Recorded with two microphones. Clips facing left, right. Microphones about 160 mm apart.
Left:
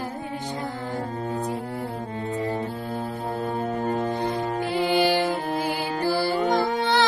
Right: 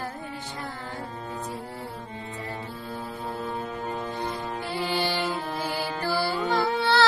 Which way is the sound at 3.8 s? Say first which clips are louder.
Left 7 dB; 55° left (ahead or behind).